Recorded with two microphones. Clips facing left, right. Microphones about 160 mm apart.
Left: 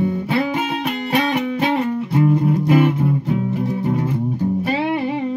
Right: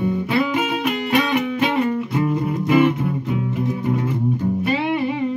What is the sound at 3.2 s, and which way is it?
Music, 35° left (ahead or behind).